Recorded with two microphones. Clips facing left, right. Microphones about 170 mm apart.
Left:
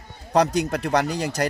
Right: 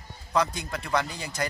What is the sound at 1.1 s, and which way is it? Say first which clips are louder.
Speech: left 9 dB; 80° left.